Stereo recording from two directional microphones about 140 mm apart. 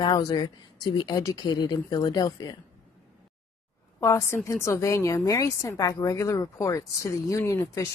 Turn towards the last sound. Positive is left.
turn(degrees=25)  # may be behind; listen again after turning